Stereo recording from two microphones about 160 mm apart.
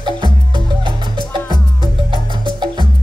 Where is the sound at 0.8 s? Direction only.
30° right (ahead or behind).